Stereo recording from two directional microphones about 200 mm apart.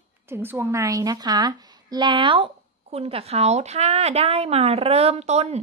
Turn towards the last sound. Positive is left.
turn(degrees=-30)  # may be behind; listen again after turning